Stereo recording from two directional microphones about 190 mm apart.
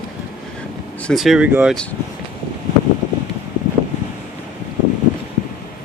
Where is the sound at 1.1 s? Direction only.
Centre (ahead or behind).